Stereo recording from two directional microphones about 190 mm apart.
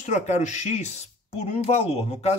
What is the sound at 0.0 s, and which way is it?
Speech, 40° left (ahead or behind).